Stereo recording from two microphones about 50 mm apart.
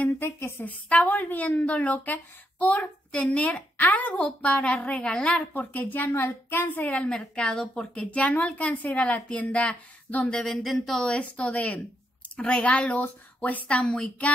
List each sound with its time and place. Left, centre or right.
0.6 s a woman's voice: left
6.0 s a woman's voice: left
7.0 s a woman's voice: centre
8.0 s a woman's voice: left
10.3 s a woman's voice: centre
11.0 s a woman's voice: left